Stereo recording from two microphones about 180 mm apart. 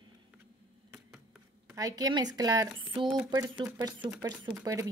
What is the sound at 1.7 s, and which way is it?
Speech, 20° right (ahead or behind).